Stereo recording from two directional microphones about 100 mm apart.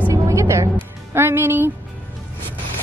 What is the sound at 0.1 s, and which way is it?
Music, 30° right (ahead or behind).